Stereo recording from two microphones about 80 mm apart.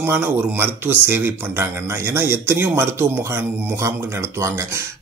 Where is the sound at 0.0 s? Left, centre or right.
Right.